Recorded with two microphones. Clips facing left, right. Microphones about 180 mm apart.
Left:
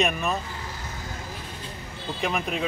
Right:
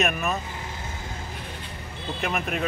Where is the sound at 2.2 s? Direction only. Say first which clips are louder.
Left 1 dB; centre (ahead or behind).